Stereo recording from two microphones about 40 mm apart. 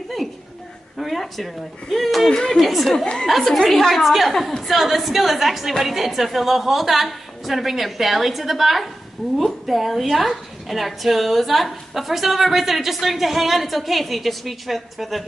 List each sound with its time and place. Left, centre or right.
0.9 s a woman's voice: centre